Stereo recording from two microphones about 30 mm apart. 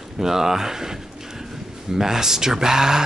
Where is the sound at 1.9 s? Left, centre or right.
Centre.